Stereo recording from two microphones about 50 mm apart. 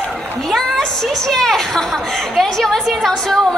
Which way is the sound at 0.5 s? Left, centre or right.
Centre.